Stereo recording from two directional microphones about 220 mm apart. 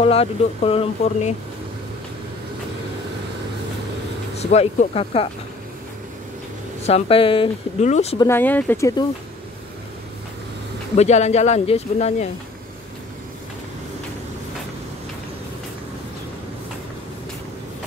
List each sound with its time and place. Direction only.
0.0 s speech: 25° left (ahead or behind)
4.4 s speech: 30° left (ahead or behind)
6.9 s speech: 25° left (ahead or behind)
8.2 s speech: 10° left (ahead or behind)
11.0 s speech: 30° left (ahead or behind)